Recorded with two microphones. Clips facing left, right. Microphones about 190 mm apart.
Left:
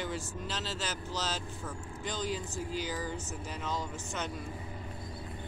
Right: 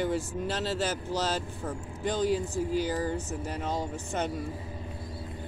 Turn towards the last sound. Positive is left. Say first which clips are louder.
# right 6 dB
turn(degrees=-60)  # may be behind; listen again after turning